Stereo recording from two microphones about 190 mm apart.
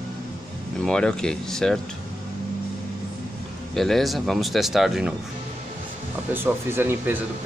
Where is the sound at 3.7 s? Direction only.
Centre (ahead or behind).